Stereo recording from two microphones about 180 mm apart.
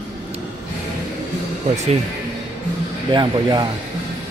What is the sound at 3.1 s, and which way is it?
Speech, 25° right (ahead or behind).